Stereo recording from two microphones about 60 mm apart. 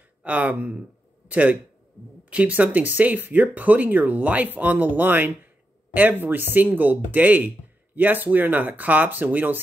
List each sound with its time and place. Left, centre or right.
0.2 s speech: right